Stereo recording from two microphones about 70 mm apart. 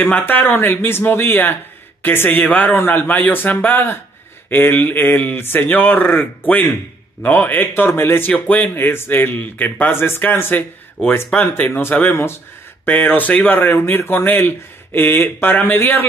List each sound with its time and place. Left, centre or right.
0.0 s speech: left
8.6 s speech: left